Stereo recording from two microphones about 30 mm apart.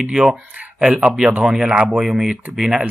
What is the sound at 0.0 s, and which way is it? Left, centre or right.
Speech, right.